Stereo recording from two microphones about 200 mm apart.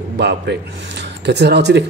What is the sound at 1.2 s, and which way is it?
Speech, 55° right (ahead or behind).